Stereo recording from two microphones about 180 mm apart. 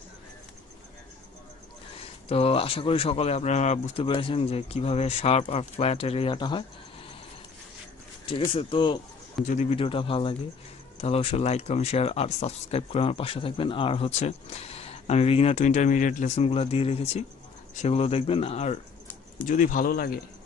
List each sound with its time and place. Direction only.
2.2 s speech: 35° left (ahead or behind)
8.3 s speech: 30° left (ahead or behind); by 20.2 s 55° left (ahead or behind)